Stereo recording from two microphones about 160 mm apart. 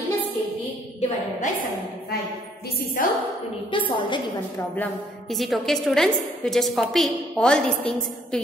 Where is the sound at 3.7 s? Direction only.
30° left (ahead or behind).